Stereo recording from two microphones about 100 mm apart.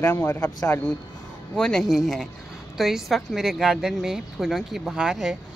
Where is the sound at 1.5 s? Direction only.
5° left (ahead or behind).